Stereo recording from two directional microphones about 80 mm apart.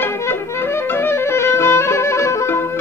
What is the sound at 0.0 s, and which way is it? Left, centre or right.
Music, left.